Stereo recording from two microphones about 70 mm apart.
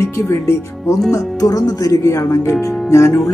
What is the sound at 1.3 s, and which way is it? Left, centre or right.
Speech, left.